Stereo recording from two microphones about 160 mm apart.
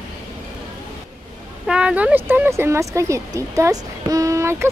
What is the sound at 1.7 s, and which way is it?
Speech, 5° right (ahead or behind).